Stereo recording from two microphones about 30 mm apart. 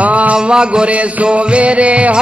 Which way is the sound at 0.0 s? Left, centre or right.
Right.